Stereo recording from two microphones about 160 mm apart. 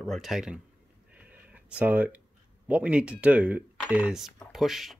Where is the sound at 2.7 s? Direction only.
10° right (ahead or behind).